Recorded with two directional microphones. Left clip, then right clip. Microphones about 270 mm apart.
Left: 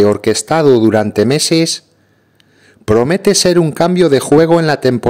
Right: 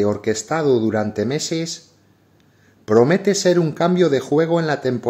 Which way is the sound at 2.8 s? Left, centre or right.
Left.